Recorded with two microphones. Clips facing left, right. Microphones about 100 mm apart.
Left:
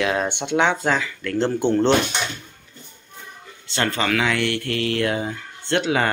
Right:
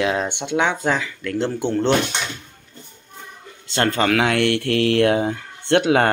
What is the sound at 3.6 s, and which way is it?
Speech, 45° right (ahead or behind).